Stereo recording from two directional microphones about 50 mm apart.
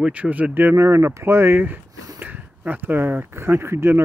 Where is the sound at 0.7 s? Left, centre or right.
Right.